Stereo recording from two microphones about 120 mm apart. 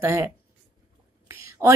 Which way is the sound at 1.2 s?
20° right (ahead or behind).